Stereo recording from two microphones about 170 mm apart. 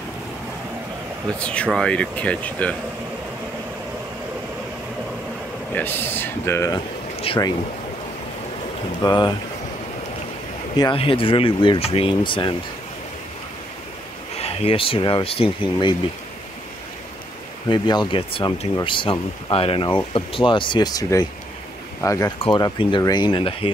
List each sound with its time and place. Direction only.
1.4 s speech: 5° left (ahead or behind)
5.8 s speech: 10° left (ahead or behind)
6.7 s a sound: 35° left (ahead or behind)
9.0 s speech: 25° left (ahead or behind)
10.8 s speech: 30° left (ahead or behind)
14.3 s speech: 35° left (ahead or behind)
17.6 s speech: 25° left (ahead or behind)
22.4 s speech: 30° left (ahead or behind)